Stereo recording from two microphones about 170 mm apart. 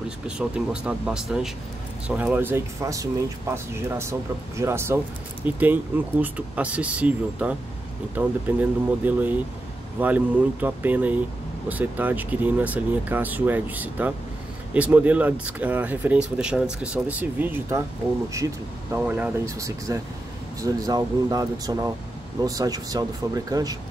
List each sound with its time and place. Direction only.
0.4 s speech: 5° right (ahead or behind); by 23.8 s 20° right (ahead or behind)